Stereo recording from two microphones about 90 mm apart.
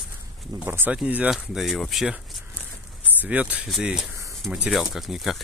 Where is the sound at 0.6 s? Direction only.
20° right (ahead or behind).